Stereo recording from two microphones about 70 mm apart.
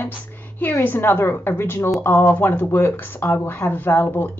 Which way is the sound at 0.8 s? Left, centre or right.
Left.